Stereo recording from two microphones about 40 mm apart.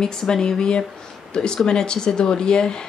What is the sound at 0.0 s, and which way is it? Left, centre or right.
A woman's voice, centre.